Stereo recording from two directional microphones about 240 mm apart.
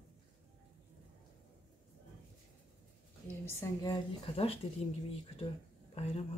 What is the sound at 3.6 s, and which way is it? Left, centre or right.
A woman's voice, centre.